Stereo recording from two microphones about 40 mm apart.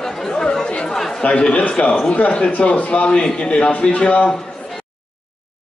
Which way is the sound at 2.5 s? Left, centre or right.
Left.